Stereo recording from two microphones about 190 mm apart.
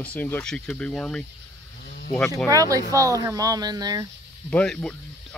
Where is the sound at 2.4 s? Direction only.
15° right (ahead or behind).